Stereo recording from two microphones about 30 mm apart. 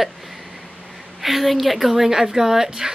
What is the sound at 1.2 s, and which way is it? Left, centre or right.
Speech, centre.